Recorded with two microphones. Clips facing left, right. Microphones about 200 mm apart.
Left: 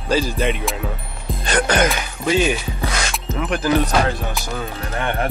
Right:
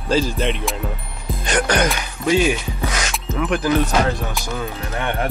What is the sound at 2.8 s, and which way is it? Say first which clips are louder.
Music: right 1 dB; 30° left (ahead or behind).